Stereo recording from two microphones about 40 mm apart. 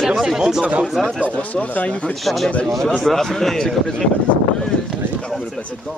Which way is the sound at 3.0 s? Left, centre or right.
Centre.